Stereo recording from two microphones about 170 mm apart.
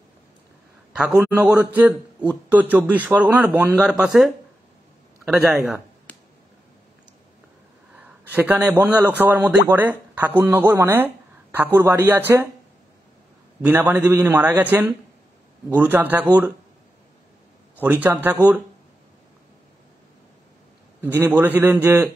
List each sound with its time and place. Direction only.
1.4 s a man's voice: 10° right (ahead or behind)
6.1 s finger snapping: 10° left (ahead or behind)
7.9 s a man's voice: 10° right (ahead or behind)
13.6 s a man's voice: 10° right (ahead or behind)
17.8 s a man's voice: 10° right (ahead or behind)
21.0 s a man's voice: 10° right (ahead or behind)